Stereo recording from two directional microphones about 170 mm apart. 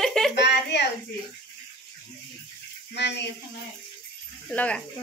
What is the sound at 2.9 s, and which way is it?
Speech, 90° left.